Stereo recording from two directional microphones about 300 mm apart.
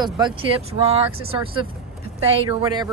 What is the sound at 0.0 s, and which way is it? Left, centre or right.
Speech, centre.